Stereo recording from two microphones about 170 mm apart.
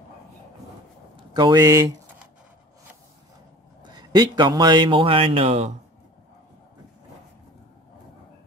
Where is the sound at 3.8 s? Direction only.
25° right (ahead or behind).